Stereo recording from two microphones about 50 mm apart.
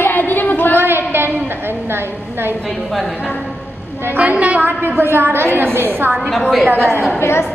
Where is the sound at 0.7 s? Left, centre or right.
Right.